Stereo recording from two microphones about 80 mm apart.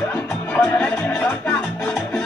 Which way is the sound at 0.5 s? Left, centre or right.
Centre.